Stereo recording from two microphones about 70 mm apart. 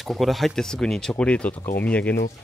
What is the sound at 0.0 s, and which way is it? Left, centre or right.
A man's voice, centre.